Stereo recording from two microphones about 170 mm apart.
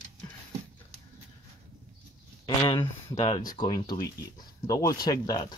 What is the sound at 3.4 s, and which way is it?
Speech, 25° left (ahead or behind).